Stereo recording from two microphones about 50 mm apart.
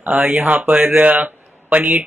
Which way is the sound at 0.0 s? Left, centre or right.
Right.